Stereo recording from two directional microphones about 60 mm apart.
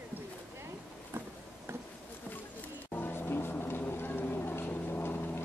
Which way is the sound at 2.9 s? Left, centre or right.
Left.